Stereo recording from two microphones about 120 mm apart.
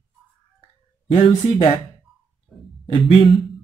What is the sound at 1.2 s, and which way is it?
Speech, 50° left (ahead or behind).